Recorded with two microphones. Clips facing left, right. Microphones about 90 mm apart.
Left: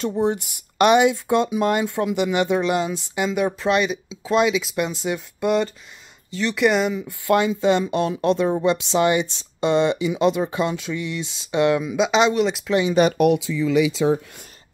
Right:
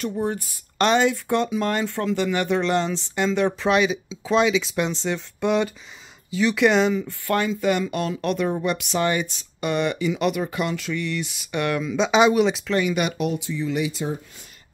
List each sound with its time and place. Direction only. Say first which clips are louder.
0.0 s speech: left 4 dB; 20° left (ahead or behind); by 7.1 s 5° left (ahead or behind)
7.1 s speech: left 4 dB; 20° left (ahead or behind)
12.0 s speech: right 2 dB; 5° right (ahead or behind)
12.6 s speech: left 2 dB; 15° left (ahead or behind)
14.0 s speech: left 9 dB; 90° left